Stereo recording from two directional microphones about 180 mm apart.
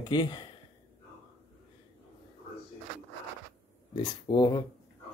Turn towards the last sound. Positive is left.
turn(degrees=25)  # may be behind; listen again after turning